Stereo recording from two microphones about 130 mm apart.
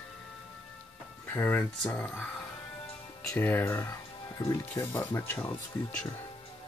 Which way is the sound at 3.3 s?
15° left (ahead or behind).